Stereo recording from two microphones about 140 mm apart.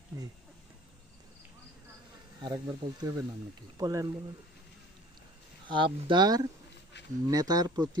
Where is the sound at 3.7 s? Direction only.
25° right (ahead or behind).